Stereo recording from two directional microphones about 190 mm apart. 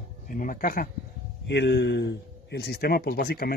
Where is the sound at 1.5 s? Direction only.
65° left (ahead or behind).